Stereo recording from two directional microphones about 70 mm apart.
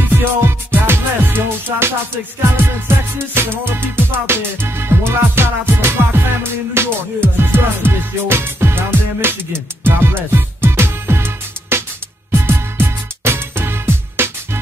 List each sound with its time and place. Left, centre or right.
0.1 s music: right
3.2 s music: right